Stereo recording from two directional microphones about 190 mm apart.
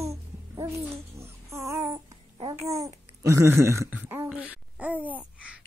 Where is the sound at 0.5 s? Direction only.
15° right (ahead or behind).